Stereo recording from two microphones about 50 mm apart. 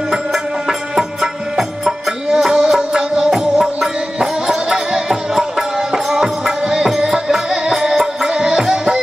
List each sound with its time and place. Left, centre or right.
0.1 s music: centre